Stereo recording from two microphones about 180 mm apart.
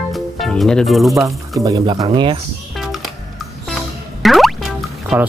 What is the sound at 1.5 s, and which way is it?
Speech, 25° right (ahead or behind).